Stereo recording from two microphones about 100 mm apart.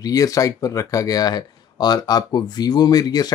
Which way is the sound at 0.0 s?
35° left (ahead or behind).